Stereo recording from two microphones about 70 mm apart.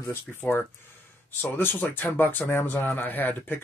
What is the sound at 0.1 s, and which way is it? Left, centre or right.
Speech, left.